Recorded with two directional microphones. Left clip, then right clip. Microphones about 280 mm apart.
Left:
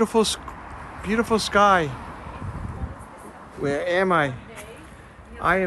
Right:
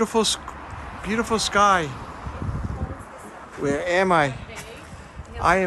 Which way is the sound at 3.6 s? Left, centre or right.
Centre.